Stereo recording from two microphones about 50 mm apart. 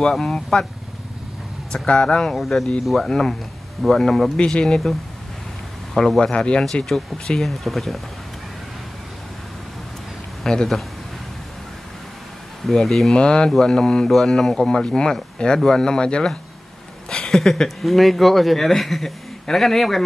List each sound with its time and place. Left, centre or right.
0.0 s speech: centre
1.7 s speech: centre
2.2 s speech: centre
4.4 s speech: centre
5.9 s speech: centre
7.3 s speech: centre
10.4 s speech: centre
12.7 s speech: centre
13.1 s speech: centre